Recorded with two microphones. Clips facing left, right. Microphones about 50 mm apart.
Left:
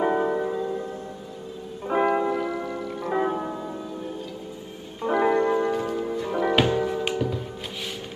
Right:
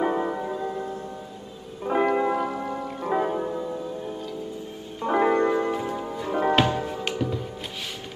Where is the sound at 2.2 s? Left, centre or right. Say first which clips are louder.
Right 1 dB; right.